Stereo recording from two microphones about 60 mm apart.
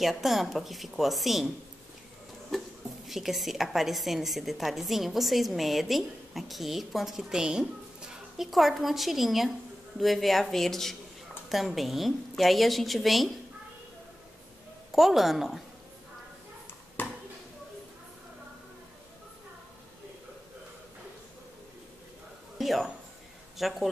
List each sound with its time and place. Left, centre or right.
0.0 s a woman's voice: centre
3.1 s a woman's voice: centre
14.9 s a woman's voice: centre
17.0 s a sound: left
22.6 s music: centre
23.6 s a woman's voice: centre